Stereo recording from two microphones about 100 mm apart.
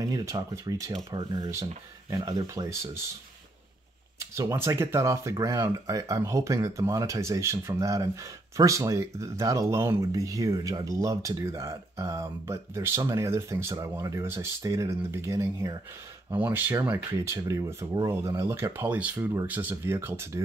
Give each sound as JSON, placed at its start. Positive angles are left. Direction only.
{"t": 0.0, "sound": "speech", "side_deg": -35}
{"t": 1.1, "sound": "speech", "side_deg": -50}
{"t": 1.5, "sound": "speech", "side_deg": -30}
{"t": 4.2, "sound": "speech", "side_deg": -30}
{"t": 10.2, "sound": "speech", "side_deg": -35}